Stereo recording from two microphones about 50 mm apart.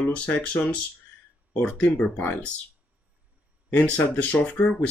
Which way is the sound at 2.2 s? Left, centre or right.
Left.